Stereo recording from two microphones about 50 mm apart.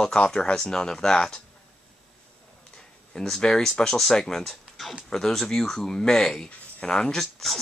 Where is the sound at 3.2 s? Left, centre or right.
Centre.